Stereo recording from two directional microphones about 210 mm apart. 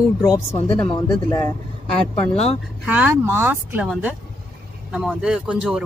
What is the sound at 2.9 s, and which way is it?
Speech, 10° right (ahead or behind).